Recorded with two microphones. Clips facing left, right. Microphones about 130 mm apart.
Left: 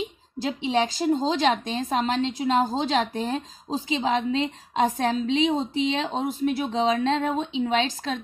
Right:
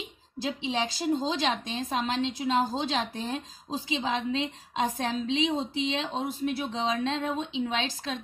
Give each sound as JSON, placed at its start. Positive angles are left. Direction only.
{"t": 0.4, "sound": "a woman's voice", "side_deg": 50}